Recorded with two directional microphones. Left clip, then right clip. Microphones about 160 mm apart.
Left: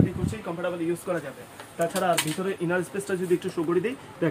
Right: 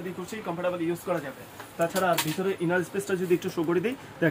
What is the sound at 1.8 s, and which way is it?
Speech, 15° left (ahead or behind).